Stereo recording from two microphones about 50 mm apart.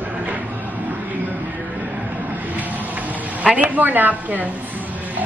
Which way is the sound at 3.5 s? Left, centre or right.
Right.